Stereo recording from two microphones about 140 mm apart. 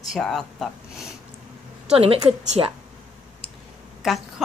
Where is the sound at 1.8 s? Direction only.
45° right (ahead or behind).